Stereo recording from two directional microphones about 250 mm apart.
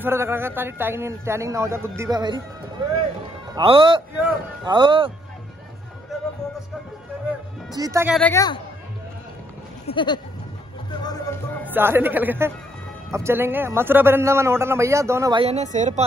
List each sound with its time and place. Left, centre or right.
0.0 s a man's voice: centre
3.5 s a man's voice: centre
7.7 s a man's voice: centre
8.1 s a woman's voice: centre
9.8 s a woman's voice: centre
10.9 s music: centre
11.7 s a man's voice: centre; by 16.0 s right